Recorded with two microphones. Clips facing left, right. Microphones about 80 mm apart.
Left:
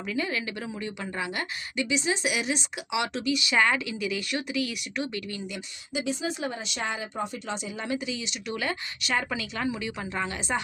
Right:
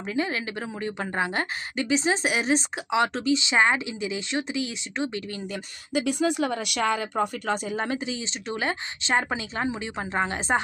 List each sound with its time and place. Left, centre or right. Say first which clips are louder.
0.0 s a woman's voice: right 2 dB; right
6.0 s a woman's voice: right 6 dB; right